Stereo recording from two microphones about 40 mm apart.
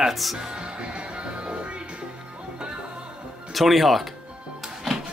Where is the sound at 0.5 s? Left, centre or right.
Right.